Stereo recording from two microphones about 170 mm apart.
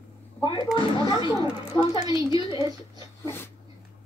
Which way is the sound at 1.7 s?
20° left (ahead or behind).